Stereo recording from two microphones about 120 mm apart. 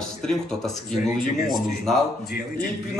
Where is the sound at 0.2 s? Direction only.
5° left (ahead or behind).